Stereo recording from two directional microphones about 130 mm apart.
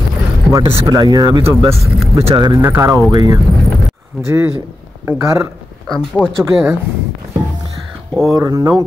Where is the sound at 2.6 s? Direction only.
20° right (ahead or behind).